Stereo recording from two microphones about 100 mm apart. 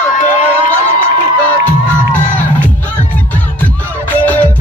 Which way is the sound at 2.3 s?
15° left (ahead or behind).